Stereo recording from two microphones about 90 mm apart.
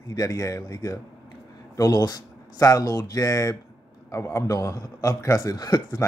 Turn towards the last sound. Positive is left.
turn(degrees=45)  # may be behind; listen again after turning